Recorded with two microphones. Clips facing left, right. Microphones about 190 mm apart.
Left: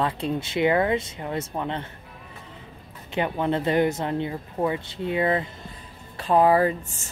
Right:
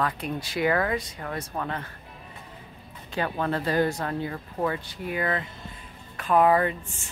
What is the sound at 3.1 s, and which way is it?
Speech, 20° left (ahead or behind).